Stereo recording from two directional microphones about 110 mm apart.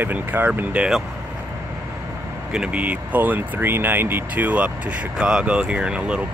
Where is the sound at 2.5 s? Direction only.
10° right (ahead or behind).